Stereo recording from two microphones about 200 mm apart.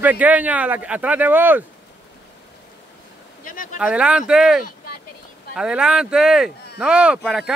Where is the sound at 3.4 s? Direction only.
45° left (ahead or behind).